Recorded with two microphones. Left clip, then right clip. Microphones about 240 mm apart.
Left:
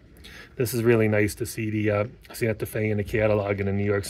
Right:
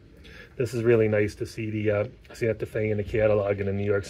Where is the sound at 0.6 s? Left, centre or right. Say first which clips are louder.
Even; left.